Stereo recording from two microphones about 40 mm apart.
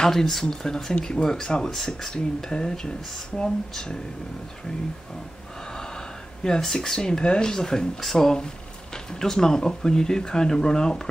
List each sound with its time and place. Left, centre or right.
0.0 s speech: centre
2.1 s speech: centre
5.7 s gasp: centre
7.0 s speech: centre
8.0 s speech: centre